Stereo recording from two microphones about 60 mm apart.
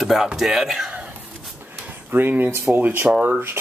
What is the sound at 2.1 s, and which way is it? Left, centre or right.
Speech, right.